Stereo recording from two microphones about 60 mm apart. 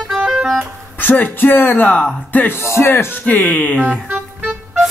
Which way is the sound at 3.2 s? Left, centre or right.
Left.